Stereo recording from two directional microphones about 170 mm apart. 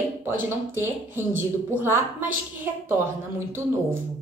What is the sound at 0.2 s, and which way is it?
A woman's voice, 15° right (ahead or behind).